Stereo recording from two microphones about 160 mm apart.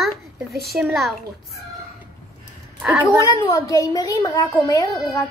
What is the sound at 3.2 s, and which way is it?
A woman's voice, 20° left (ahead or behind).